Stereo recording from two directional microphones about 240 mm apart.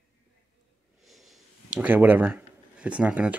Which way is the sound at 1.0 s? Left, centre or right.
Centre.